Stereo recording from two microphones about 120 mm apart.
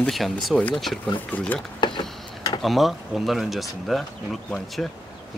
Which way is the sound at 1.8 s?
40° left (ahead or behind).